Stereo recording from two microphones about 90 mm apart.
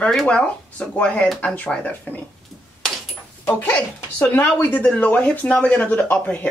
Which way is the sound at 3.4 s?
25° left (ahead or behind).